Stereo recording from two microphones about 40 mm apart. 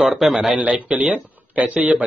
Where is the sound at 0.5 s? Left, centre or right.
Right.